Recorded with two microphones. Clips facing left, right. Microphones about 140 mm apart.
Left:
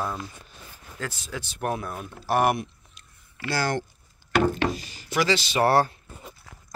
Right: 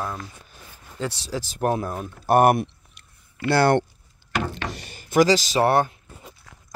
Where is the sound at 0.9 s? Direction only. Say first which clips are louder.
Right 6 dB; 35° right (ahead or behind).